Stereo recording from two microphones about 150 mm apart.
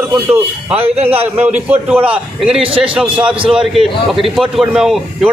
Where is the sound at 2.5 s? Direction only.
40° right (ahead or behind).